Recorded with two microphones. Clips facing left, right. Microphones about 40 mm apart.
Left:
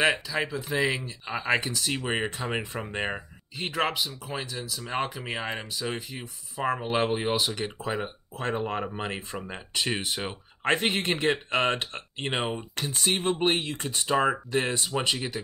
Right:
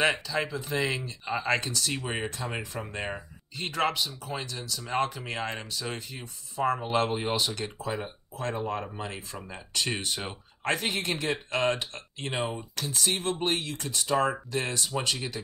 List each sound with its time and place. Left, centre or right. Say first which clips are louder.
0.0 s speech: left 1 dB; centre; by 3.2 s left
3.5 s speech: even; centre
8.0 s speech: left 2 dB; left
9.8 s speech: left 2 dB; centre
10.6 s speech: left 4 dB; left; by 15.4 s centre